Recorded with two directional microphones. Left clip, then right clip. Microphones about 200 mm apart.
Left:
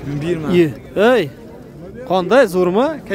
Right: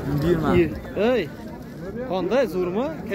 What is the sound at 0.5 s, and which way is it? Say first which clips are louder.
A man's voice: left 6 dB; 45° left (ahead or behind).